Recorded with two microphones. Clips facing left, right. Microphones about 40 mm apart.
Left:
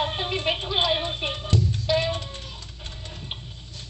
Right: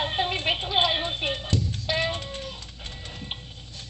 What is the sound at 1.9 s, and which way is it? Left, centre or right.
Music, centre.